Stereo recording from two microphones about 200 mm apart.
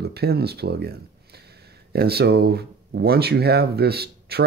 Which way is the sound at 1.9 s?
55° right (ahead or behind).